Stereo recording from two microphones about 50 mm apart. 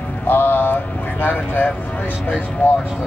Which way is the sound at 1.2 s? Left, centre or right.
Left.